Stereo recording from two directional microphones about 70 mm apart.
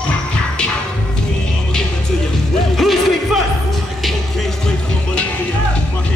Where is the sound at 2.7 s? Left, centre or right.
Centre.